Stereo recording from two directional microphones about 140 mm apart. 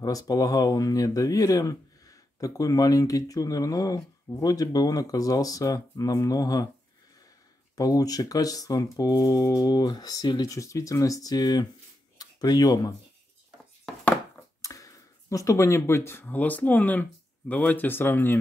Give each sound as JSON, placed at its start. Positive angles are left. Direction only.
{"t": 0.0, "sound": "speech", "side_deg": 25}
{"t": 7.7, "sound": "speech", "side_deg": 25}
{"t": 14.6, "sound": "a sound", "side_deg": 25}
{"t": 16.1, "sound": "speech", "side_deg": 15}